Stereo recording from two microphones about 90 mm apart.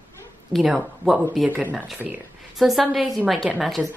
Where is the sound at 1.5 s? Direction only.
15° right (ahead or behind).